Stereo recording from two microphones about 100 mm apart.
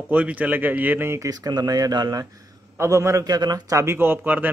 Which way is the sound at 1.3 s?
40° right (ahead or behind).